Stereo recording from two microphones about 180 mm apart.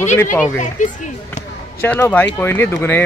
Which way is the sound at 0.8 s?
45° left (ahead or behind).